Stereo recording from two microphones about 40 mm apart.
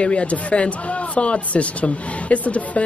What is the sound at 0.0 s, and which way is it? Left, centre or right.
Speech, left.